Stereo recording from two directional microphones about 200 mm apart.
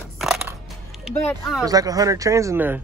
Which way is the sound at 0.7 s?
Centre (ahead or behind).